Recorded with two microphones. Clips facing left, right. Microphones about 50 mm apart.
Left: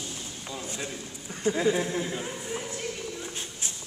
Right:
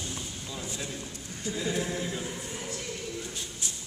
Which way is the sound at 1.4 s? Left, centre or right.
Left.